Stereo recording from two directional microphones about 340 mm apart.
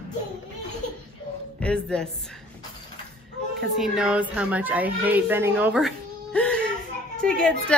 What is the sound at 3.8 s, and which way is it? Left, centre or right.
A woman's voice, centre.